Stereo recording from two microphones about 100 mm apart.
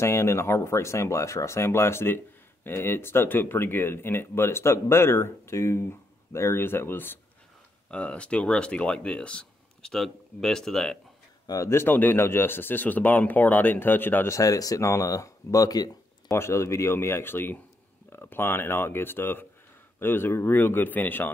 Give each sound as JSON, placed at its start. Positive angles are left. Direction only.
{"t": 0.0, "sound": "speech", "side_deg": 25}
{"t": 7.9, "sound": "speech", "side_deg": 10}
{"t": 11.4, "sound": "speech", "side_deg": 35}
{"t": 16.3, "sound": "speech", "side_deg": 25}